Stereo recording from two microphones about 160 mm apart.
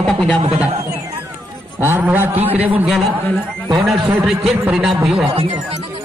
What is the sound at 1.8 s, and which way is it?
Speech, 10° right (ahead or behind).